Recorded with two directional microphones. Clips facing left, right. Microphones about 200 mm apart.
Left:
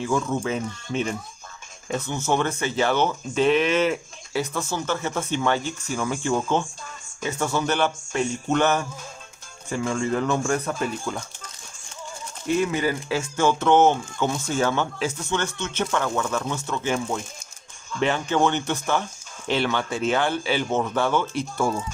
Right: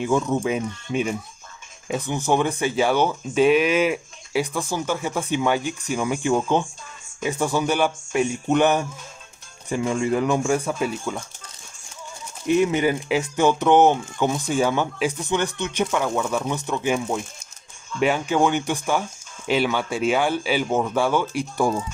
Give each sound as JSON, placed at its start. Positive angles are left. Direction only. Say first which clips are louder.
{"t": 0.0, "sound": "speech", "louder": "right 3 dB", "side_deg": -20}
{"t": 12.4, "sound": "speech", "louder": "right 4 dB", "side_deg": -20}